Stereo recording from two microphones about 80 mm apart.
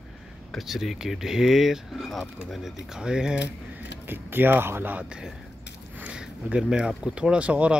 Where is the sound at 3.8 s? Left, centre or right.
Right.